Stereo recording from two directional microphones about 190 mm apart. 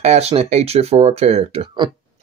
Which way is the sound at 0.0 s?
35° right (ahead or behind).